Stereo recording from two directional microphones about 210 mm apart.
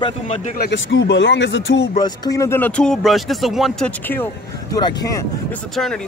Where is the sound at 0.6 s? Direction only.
55° left (ahead or behind).